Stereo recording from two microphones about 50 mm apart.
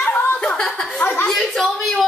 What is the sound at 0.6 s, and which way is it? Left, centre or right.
Speech, centre.